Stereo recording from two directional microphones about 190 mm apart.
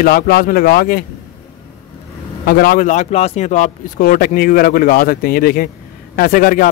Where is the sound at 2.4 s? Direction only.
50° left (ahead or behind).